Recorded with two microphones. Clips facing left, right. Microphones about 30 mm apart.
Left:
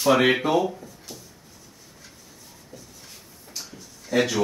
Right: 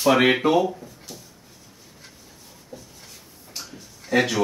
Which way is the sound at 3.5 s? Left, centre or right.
Right.